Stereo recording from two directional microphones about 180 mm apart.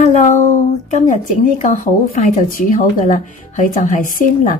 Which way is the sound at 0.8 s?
40° left (ahead or behind).